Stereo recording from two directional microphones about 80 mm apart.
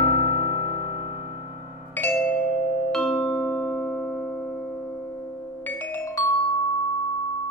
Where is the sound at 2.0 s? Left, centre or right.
Centre.